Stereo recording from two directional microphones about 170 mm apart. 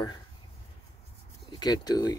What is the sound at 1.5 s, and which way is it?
Speech, 25° left (ahead or behind).